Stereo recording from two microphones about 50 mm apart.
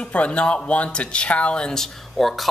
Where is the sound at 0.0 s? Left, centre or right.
Left.